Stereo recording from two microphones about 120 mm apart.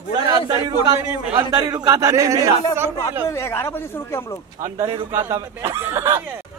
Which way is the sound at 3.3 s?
20° left (ahead or behind).